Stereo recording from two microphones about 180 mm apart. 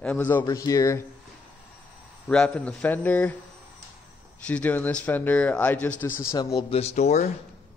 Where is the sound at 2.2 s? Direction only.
5° left (ahead or behind).